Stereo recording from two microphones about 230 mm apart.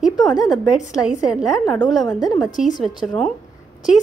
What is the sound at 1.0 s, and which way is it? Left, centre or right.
Speech, centre.